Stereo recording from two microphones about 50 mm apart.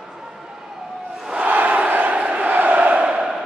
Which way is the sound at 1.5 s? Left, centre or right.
Right.